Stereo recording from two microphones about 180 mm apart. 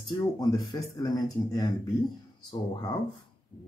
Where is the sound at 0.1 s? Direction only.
20° left (ahead or behind).